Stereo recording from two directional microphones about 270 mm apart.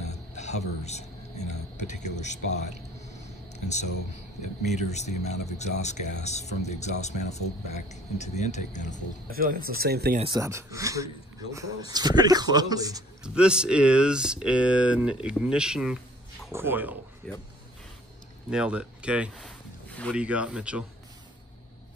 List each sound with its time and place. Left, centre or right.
0.4 s speech: left
3.2 s whispering: left
4.6 s speech: left
9.3 s speech: right
10.1 s speech: centre
13.2 s speech: centre
18.5 s speech: centre